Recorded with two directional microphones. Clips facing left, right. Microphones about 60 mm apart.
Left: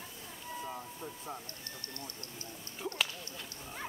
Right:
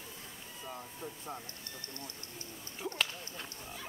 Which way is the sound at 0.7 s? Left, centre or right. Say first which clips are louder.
Left 1 dB; centre.